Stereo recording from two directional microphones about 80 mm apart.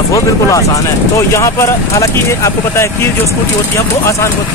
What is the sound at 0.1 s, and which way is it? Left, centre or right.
Speech, left.